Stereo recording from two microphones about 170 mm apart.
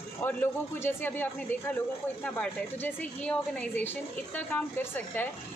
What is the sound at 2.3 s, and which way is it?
A woman's voice, 10° left (ahead or behind).